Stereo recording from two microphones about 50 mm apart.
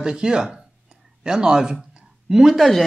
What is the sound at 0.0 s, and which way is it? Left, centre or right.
Speech, centre.